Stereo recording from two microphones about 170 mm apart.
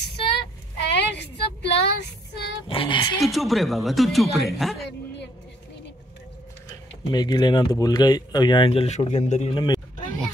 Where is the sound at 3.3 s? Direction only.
Centre (ahead or behind).